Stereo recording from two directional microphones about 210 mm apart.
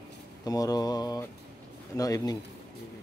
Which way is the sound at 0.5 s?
15° left (ahead or behind).